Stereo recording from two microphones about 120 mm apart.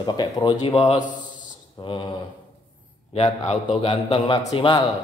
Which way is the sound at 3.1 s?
60° left (ahead or behind).